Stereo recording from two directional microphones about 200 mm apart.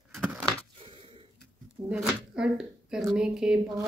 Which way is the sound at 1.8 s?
5° right (ahead or behind).